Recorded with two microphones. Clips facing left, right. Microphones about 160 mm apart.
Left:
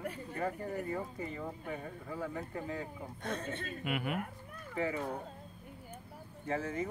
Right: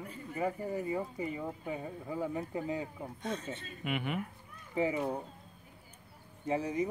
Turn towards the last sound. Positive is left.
turn(degrees=-15)  # may be behind; listen again after turning